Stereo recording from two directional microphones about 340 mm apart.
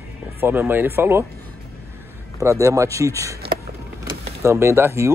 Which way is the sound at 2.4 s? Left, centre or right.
Centre.